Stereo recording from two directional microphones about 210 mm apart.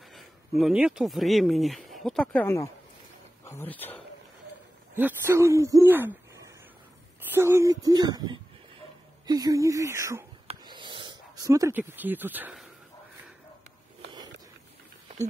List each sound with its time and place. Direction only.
0.1 s speech: centre (ahead or behind)
4.9 s hoot: 10° right (ahead or behind)
7.2 s speech: 10° right (ahead or behind)
10.5 s a sound: 20° right (ahead or behind)